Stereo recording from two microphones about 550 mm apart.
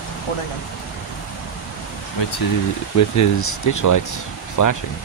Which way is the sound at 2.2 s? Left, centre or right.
Left.